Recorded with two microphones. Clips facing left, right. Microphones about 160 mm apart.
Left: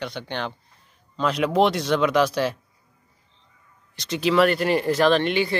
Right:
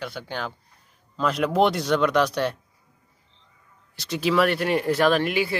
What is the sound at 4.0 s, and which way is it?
Speech, centre (ahead or behind).